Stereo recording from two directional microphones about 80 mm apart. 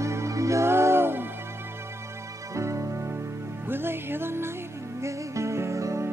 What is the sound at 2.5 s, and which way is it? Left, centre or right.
Music, right.